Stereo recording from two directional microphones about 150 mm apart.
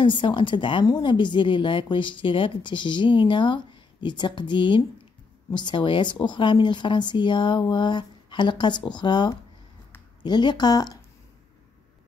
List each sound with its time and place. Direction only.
0.0 s speech: 35° left (ahead or behind)